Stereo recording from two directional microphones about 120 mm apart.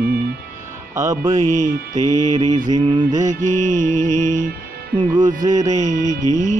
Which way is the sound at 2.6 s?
40° right (ahead or behind).